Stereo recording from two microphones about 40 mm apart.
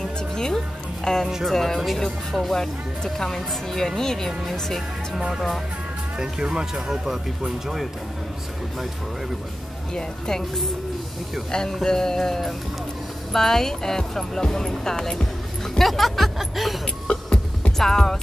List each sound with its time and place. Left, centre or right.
0.0 s music: centre
1.0 s speech: centre
6.1 s speech: centre
9.9 s speech: centre
11.8 s speech: centre
15.8 s speech: centre
16.8 s music: left
17.7 s speech: centre